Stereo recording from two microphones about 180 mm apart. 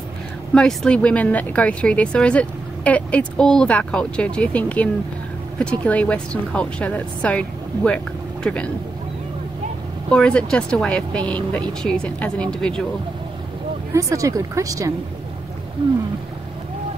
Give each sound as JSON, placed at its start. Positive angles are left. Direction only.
{"t": 0.6, "sound": "speech", "side_deg": 5}
{"t": 10.0, "sound": "speech", "side_deg": 5}
{"t": 13.9, "sound": "speech", "side_deg": -20}